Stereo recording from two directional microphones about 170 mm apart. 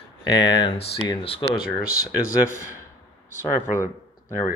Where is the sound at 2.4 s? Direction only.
15° left (ahead or behind).